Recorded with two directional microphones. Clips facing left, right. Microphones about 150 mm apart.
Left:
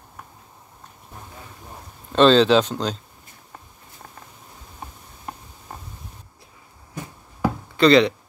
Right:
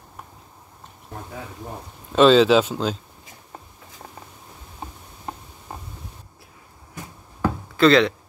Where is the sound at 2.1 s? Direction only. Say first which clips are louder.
Right 1 dB; 5° right (ahead or behind).